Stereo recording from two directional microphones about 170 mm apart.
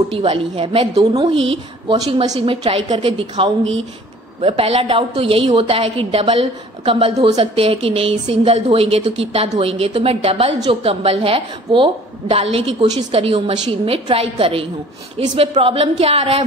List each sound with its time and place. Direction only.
0.1 s a woman's voice: 35° right (ahead or behind)